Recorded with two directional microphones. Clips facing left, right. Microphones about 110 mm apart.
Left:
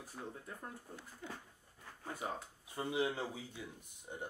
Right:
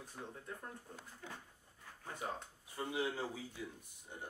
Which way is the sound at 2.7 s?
20° left (ahead or behind).